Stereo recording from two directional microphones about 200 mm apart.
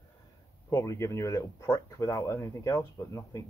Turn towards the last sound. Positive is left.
turn(degrees=15)  # may be behind; listen again after turning